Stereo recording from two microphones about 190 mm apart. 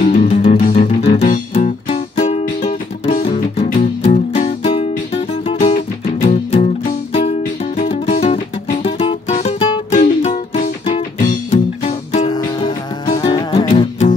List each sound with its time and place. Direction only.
0.0 s music: 40° left (ahead or behind)
7.8 s music: 35° left (ahead or behind)
12.3 s music: 25° left (ahead or behind)